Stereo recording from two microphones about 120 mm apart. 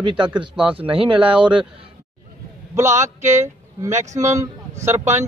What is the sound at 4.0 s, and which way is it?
Speech, 80° right.